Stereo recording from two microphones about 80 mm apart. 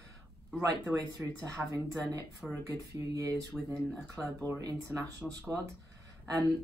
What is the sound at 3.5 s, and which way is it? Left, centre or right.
Speech, centre.